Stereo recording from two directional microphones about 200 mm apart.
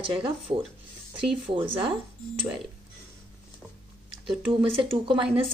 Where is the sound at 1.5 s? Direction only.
25° right (ahead or behind).